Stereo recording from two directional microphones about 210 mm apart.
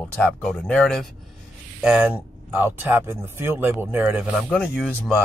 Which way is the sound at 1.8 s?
5° right (ahead or behind).